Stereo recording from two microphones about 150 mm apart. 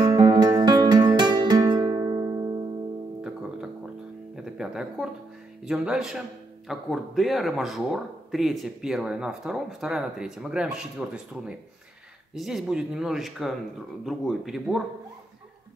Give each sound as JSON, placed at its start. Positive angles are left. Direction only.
{"t": 0.0, "sound": "music", "side_deg": -25}
{"t": 4.4, "sound": "music", "side_deg": -5}
{"t": 5.7, "sound": "speech", "side_deg": -5}